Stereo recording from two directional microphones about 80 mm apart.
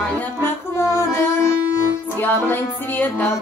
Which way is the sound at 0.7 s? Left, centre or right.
Left.